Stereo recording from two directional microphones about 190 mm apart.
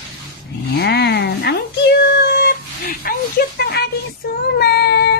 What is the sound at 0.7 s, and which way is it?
Cat, 60° left (ahead or behind).